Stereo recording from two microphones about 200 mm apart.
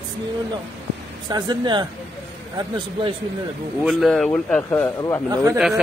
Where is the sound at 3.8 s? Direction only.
5° right (ahead or behind); by 5.2 s 15° left (ahead or behind).